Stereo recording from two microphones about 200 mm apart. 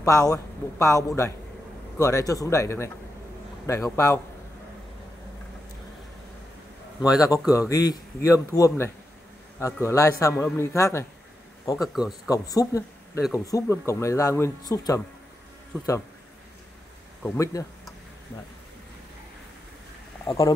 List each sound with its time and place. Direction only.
0.3 s a man's voice: 15° left (ahead or behind)
7.2 s a man's voice: 15° left (ahead or behind)
11.9 s speech: centre (ahead or behind)
12.3 s a man's voice: 15° left (ahead or behind)
17.2 s a man's voice: 15° left (ahead or behind)
20.2 s a man's voice: 15° left (ahead or behind)